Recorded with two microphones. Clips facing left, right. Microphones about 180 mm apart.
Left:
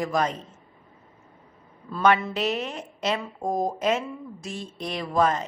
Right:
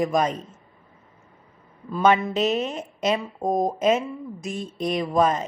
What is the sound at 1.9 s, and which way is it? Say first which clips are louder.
A woman's voice: right 2 dB; 20° right (ahead or behind).